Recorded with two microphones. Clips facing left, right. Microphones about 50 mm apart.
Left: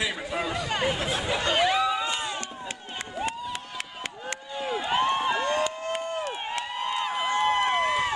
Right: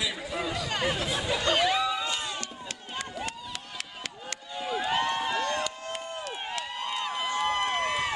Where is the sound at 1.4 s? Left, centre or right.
Centre.